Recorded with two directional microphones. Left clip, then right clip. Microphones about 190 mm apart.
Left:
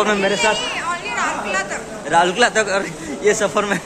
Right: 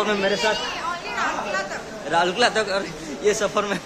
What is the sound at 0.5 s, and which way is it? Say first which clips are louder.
Chatter: left 4 dB; 25° right (ahead or behind).